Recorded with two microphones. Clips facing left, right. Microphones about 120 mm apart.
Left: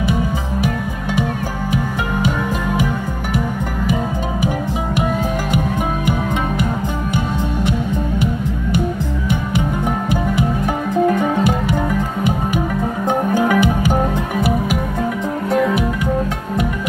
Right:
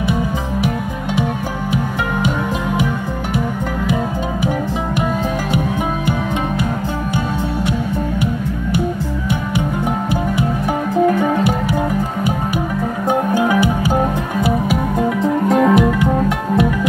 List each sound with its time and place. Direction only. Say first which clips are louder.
13.1 s music: right 1 dB; 15° right (ahead or behind)
15.4 s music: right 2 dB; 45° right (ahead or behind)